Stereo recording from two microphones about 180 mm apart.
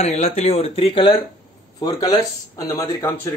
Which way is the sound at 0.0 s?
40° left (ahead or behind).